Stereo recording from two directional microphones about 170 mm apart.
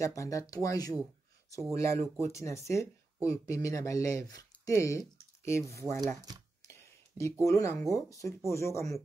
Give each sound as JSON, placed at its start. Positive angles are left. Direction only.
{"t": 0.0, "sound": "speech", "side_deg": 20}
{"t": 6.3, "sound": "speech", "side_deg": -25}
{"t": 6.7, "sound": "a sound", "side_deg": 15}
{"t": 7.9, "sound": "speech", "side_deg": 20}